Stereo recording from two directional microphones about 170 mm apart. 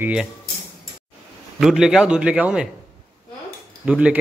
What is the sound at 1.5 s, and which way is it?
Speech, centre (ahead or behind).